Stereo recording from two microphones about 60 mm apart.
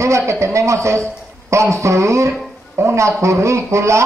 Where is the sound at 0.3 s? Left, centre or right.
Right.